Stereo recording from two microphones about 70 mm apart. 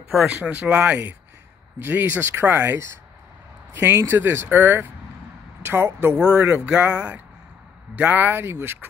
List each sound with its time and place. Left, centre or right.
0.4 s speech: right
3.7 s speech: right
6.1 s speech: centre